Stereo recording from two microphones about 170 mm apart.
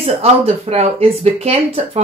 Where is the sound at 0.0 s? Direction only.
35° right (ahead or behind).